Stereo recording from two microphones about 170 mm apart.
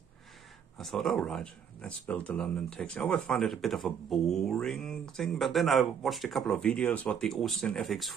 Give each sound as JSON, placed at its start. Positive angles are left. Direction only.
{"t": 0.7, "sound": "speech", "side_deg": 0}